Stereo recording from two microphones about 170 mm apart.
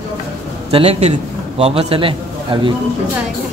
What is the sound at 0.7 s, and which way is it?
A man's voice, 35° right (ahead or behind).